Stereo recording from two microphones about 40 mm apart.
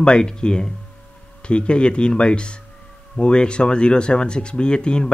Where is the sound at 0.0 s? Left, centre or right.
Left.